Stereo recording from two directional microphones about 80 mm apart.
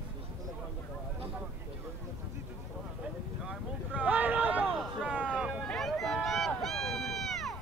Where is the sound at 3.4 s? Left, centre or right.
Centre.